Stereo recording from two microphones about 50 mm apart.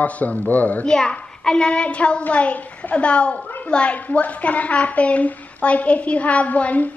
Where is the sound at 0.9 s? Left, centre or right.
Centre.